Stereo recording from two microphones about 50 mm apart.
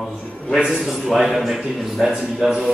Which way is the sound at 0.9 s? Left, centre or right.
Centre.